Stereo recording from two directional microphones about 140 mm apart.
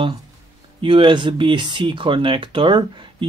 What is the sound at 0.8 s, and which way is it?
Speech, 35° right (ahead or behind).